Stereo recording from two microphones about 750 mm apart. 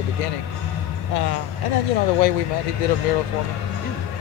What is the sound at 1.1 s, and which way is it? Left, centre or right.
Speech, left.